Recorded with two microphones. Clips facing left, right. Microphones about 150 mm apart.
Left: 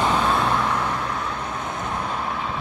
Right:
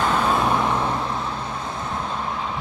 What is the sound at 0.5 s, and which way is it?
Vehicle, 20° right (ahead or behind).